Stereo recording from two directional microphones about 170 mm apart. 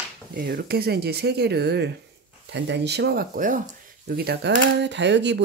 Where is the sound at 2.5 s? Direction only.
90° right.